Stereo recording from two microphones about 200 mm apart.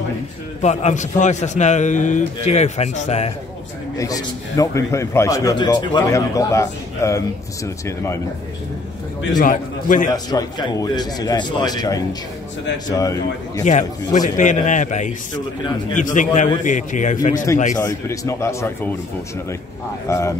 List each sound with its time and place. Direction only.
0.6 s a man's voice: 35° left (ahead or behind)
4.0 s a man's voice: 15° left (ahead or behind)
9.4 s a man's voice: 40° left (ahead or behind)
10.0 s a man's voice: 20° left (ahead or behind)
13.7 s a man's voice: 40° left (ahead or behind)
17.7 s a man's voice: 15° left (ahead or behind)
20.1 s a man's voice: 15° left (ahead or behind)